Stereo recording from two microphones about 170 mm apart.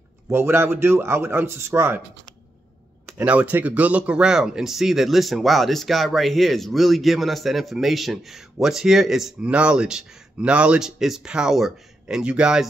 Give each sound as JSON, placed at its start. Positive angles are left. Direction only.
{"t": 0.3, "sound": "a man's voice", "side_deg": -15}
{"t": 3.1, "sound": "speech", "side_deg": -10}